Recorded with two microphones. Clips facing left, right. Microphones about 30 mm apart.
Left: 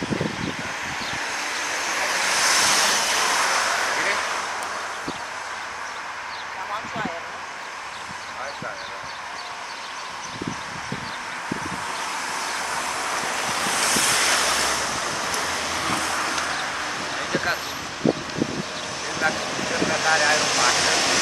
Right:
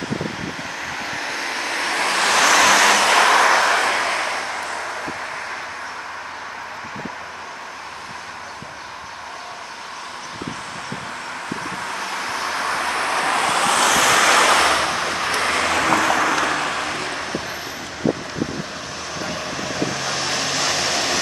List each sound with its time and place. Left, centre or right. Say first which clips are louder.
1.2 s vehicle: right 2 dB; right
1.6 s vehicle: right 5 dB; right
2.3 s vehicle: right 8 dB; right
3.5 s vehicle: right 5 dB; right
12.0 s vehicle: right 3 dB; centre; by 14.7 s right
14.7 s vehicle: right 5 dB; right
15.4 s vehicle: right 7 dB; right
19.2 s vehicle: left 4 dB; centre